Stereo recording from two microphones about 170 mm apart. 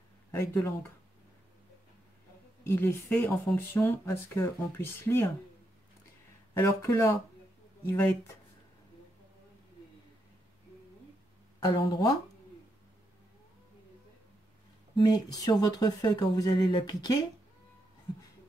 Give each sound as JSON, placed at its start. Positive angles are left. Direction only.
{"t": 0.3, "sound": "speech", "side_deg": 15}
{"t": 2.6, "sound": "speech", "side_deg": 15}
{"t": 6.6, "sound": "speech", "side_deg": 15}
{"t": 11.6, "sound": "speech", "side_deg": 25}
{"t": 15.0, "sound": "speech", "side_deg": 25}